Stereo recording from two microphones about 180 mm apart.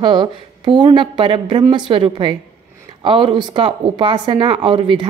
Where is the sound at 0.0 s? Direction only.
25° right (ahead or behind).